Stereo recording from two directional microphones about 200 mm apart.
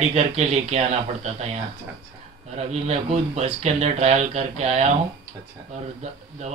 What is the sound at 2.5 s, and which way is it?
Speech, 30° right (ahead or behind).